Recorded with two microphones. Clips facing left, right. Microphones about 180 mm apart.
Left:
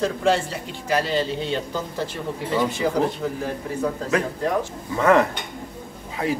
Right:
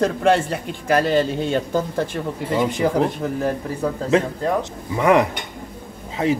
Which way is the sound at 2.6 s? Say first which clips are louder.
Right 2 dB; 15° right (ahead or behind).